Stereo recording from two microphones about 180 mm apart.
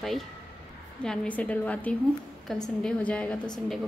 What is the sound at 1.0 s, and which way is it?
A woman's voice, 5° left (ahead or behind).